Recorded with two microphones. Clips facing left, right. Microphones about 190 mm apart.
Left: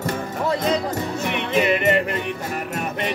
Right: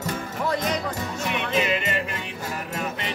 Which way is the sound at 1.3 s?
60° left (ahead or behind).